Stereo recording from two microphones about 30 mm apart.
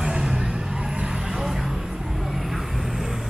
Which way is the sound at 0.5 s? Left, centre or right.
Right.